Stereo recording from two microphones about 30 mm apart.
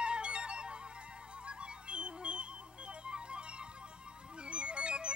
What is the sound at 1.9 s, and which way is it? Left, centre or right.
Music, right.